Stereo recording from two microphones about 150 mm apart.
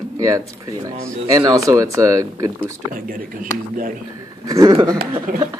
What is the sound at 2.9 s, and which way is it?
Speech, 70° right (ahead or behind).